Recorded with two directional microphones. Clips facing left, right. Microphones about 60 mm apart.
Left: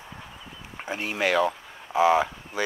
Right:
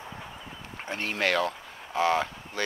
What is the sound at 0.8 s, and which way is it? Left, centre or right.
Speech, centre.